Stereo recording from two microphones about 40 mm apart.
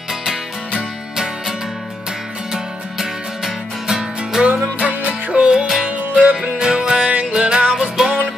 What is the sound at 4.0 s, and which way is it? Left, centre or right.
Music, right.